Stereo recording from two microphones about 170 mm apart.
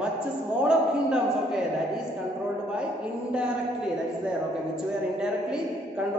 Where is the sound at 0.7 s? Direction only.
5° right (ahead or behind).